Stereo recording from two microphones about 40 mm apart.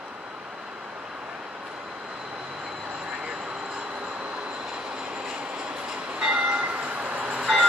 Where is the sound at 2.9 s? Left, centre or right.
Right.